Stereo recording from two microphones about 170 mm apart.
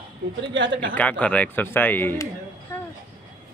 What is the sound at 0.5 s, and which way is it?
Speech, 90° right.